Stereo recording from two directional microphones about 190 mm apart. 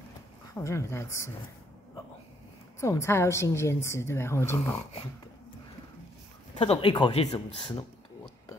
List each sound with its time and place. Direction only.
0.6 s a woman's voice: 15° left (ahead or behind)
2.8 s a woman's voice: 15° left (ahead or behind)
6.6 s speech: 25° left (ahead or behind)